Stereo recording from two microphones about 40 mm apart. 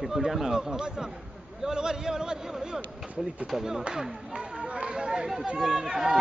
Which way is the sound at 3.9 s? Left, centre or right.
Centre.